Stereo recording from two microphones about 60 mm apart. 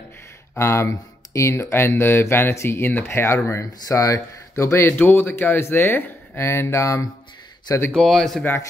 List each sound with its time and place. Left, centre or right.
0.6 s speech: left
3.8 s speech: left
4.9 s speech: left
7.9 s speech: centre